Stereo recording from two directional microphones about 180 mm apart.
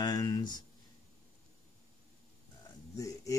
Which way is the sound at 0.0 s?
20° left (ahead or behind).